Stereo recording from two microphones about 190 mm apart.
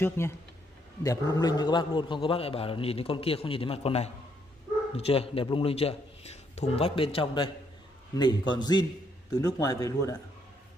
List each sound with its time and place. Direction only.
0.2 s a man's voice: 15° left (ahead or behind)